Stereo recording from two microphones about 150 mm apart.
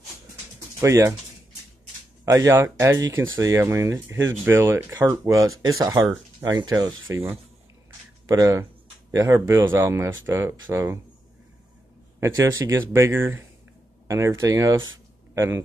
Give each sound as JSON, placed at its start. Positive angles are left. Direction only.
{"t": 0.7, "sound": "speech", "side_deg": -20}
{"t": 2.2, "sound": "speech", "side_deg": -20}
{"t": 8.3, "sound": "speech", "side_deg": -20}
{"t": 12.2, "sound": "speech", "side_deg": -20}